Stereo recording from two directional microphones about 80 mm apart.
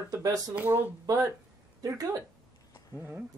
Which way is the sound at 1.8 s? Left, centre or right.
Right.